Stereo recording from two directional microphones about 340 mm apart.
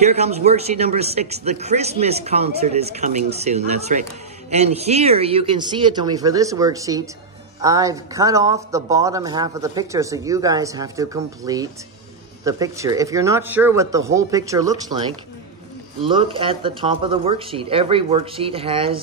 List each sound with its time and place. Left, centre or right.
0.0 s speech: centre
16.1 s speech: centre